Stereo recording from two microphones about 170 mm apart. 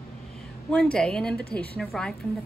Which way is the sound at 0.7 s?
5° left (ahead or behind).